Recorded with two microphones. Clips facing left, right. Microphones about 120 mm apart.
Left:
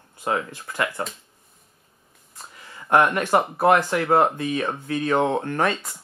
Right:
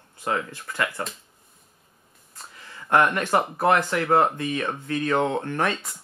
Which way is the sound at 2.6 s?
15° left (ahead or behind).